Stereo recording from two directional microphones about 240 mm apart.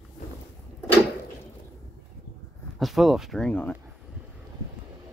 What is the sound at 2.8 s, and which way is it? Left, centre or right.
Speech, centre.